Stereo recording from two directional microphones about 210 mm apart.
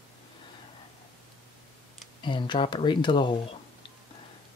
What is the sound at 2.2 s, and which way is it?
Speech, 20° left (ahead or behind).